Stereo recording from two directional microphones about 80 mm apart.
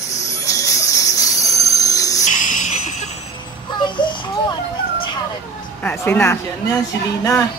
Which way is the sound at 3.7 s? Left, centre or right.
Left.